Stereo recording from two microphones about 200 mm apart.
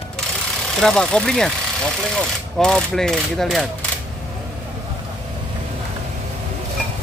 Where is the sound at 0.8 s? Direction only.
5° left (ahead or behind).